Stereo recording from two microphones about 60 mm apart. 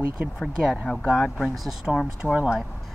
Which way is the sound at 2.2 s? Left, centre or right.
Centre.